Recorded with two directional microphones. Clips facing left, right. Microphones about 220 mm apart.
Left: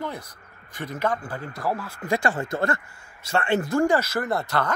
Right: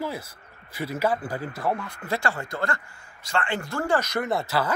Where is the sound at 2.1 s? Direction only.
20° left (ahead or behind); by 4.7 s 5° right (ahead or behind).